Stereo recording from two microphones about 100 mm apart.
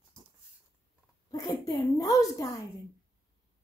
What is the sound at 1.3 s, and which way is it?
A woman's voice, 40° left (ahead or behind).